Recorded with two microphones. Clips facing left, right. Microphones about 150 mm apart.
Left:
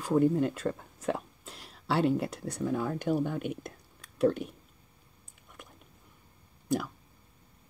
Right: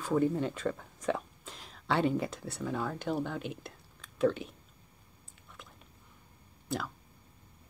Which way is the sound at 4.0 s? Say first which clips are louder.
Left 2 dB; 10° left (ahead or behind).